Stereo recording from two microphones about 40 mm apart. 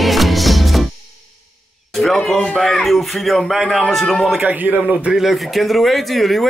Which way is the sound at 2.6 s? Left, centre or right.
Centre.